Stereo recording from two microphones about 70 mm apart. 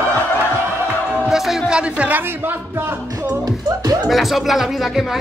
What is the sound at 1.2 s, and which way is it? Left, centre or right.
Speech, centre.